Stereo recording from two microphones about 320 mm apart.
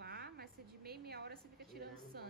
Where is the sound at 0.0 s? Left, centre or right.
Right.